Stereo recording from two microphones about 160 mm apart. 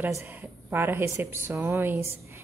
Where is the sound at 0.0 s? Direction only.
15° right (ahead or behind).